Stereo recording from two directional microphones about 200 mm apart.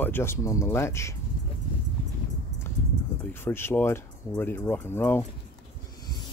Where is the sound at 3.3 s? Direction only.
10° left (ahead or behind).